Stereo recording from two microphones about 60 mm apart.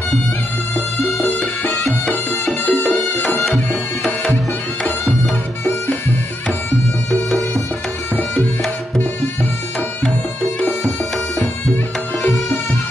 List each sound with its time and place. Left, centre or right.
2.6 s music: left